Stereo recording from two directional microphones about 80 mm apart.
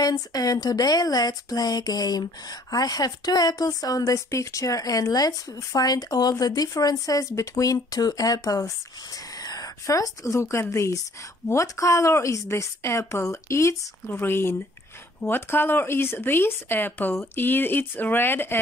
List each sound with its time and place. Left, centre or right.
0.0 s a woman's voice: left